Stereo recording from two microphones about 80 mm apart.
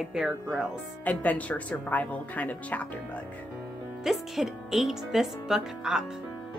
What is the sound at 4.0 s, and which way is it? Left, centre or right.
Speech, centre.